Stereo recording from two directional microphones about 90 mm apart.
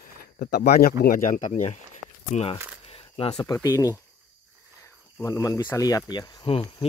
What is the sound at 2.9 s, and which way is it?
Coin, 90° left.